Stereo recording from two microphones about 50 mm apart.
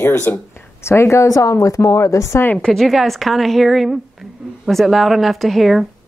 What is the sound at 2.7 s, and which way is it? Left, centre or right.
A woman's voice, centre.